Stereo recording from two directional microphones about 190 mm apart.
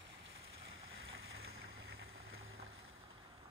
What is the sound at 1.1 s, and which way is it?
Boat, 90° right.